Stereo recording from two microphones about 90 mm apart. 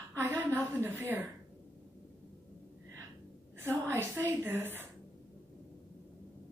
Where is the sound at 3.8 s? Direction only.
25° right (ahead or behind).